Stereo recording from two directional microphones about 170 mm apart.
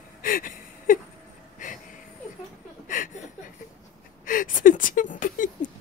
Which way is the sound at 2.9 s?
50° left (ahead or behind).